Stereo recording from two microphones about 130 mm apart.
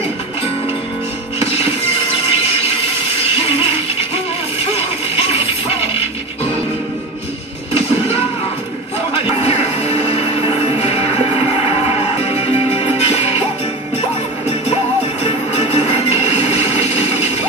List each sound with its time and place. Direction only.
1.4 s music: 50° left (ahead or behind)
4.7 s music: 50° left (ahead or behind)
9.1 s music: 50° left (ahead or behind)
12.4 s music: 50° left (ahead or behind)
15.5 s music: 50° left (ahead or behind)